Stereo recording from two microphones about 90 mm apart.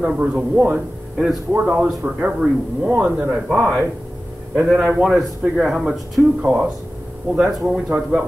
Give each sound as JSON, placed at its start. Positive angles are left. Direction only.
{"t": 0.0, "sound": "speech", "side_deg": -10}